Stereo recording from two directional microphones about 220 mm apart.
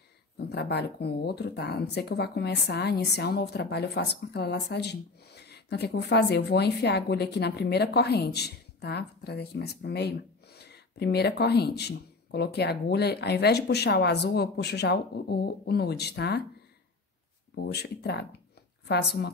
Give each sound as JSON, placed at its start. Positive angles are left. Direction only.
{"t": 0.4, "sound": "speech", "side_deg": 50}
{"t": 17.6, "sound": "speech", "side_deg": 45}